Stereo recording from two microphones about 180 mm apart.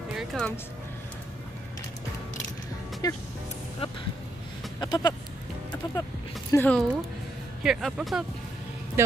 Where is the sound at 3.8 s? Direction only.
30° left (ahead or behind).